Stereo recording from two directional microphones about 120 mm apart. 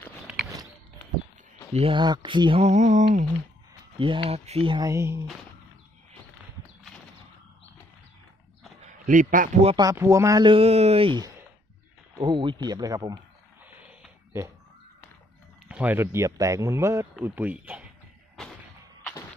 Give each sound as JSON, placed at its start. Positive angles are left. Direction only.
{"t": 1.7, "sound": "speech", "side_deg": -60}
{"t": 2.0, "sound": "speech", "side_deg": -40}
{"t": 2.6, "sound": "mantra", "side_deg": -75}
{"t": 4.0, "sound": "speech", "side_deg": -50}
{"t": 4.7, "sound": "speech", "side_deg": -25}
{"t": 8.8, "sound": "a man's voice", "side_deg": -80}
{"t": 9.9, "sound": "speech", "side_deg": -25}
{"t": 10.4, "sound": "speech", "side_deg": -50}
{"t": 12.2, "sound": "speech", "side_deg": -45}
{"t": 13.7, "sound": "a sound", "side_deg": -10}
{"t": 15.7, "sound": "speech", "side_deg": -15}